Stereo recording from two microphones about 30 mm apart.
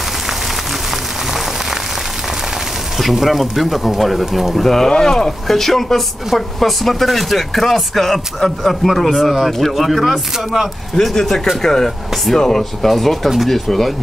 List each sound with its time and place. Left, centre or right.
1.3 s a sound: centre
3.0 s speech: centre
4.8 s speech: left
5.5 s speech: centre
9.5 s speech: centre
9.8 s speech: centre
10.3 s speech: centre
11.6 s speech: centre